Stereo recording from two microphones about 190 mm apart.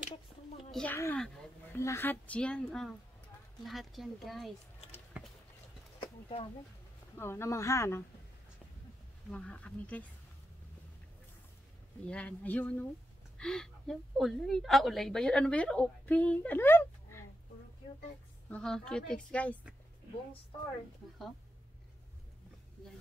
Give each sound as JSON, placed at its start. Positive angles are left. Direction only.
{"t": 0.7, "sound": "a sound", "side_deg": 5}
{"t": 0.9, "sound": "a woman's voice", "side_deg": 15}
{"t": 1.2, "sound": "a sound", "side_deg": 0}
{"t": 1.8, "sound": "a woman's voice", "side_deg": 15}
{"t": 5.9, "sound": "a sound", "side_deg": 25}
{"t": 7.2, "sound": "a woman's voice", "side_deg": 15}
{"t": 9.3, "sound": "a woman's voice", "side_deg": 5}
{"t": 12.1, "sound": "a woman's voice", "side_deg": 5}
{"t": 18.5, "sound": "a woman's voice", "side_deg": 5}